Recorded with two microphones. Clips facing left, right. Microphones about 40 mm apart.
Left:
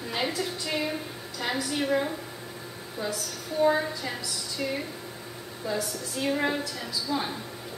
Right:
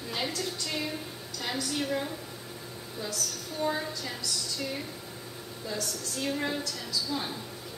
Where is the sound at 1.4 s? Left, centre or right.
Centre.